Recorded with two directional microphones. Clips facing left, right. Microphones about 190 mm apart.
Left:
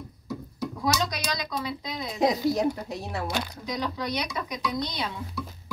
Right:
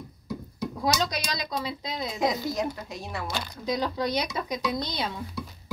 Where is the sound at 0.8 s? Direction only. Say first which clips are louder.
Even; 30° right (ahead or behind).